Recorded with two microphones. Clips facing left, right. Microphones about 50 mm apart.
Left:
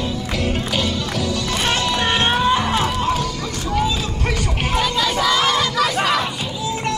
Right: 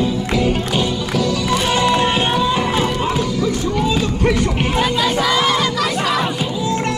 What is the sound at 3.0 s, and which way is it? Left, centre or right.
Music, centre.